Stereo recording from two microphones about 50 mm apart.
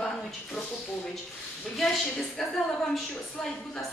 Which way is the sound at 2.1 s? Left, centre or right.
Centre.